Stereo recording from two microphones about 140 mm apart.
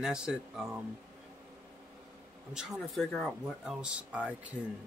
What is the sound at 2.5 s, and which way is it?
Speech, centre (ahead or behind).